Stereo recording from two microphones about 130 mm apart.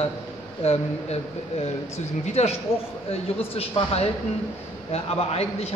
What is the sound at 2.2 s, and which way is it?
Speech, 55° left (ahead or behind).